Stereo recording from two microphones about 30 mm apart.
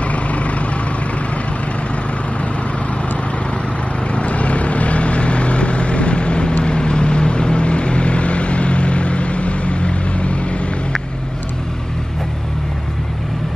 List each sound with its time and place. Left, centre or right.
0.1 s vehicle: left
4.1 s vehicle: left